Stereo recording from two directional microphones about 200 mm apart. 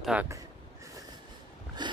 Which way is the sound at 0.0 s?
5° right (ahead or behind).